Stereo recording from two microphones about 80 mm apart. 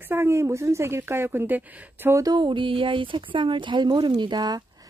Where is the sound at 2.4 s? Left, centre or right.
Right.